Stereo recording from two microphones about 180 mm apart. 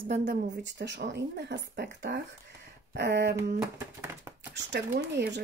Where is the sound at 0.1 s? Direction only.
65° right (ahead or behind).